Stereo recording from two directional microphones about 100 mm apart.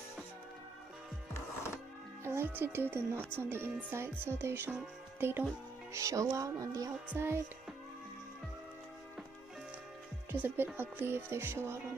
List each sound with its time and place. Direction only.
2.2 s speech: 25° right (ahead or behind)
5.9 s speech: 35° right (ahead or behind)
10.3 s speech: 20° right (ahead or behind)